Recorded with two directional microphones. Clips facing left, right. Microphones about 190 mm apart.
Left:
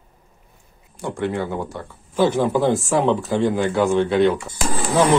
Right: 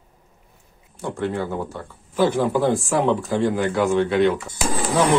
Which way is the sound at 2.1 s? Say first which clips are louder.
Left 1 dB; 25° left (ahead or behind).